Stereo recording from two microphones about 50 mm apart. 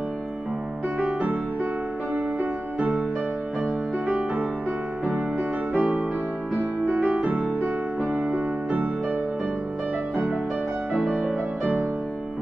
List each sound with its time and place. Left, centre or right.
0.9 s music: right
3.6 s music: right
5.7 s music: right
11.0 s music: centre